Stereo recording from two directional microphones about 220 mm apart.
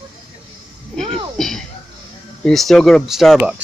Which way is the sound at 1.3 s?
Centre (ahead or behind).